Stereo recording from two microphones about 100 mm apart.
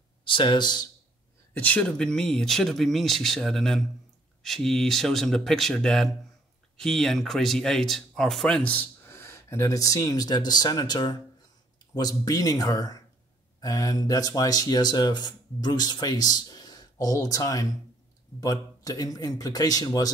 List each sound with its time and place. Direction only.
0.2 s speech: 55° left (ahead or behind)
1.5 s speech: 15° left (ahead or behind); by 20.1 s 40° left (ahead or behind)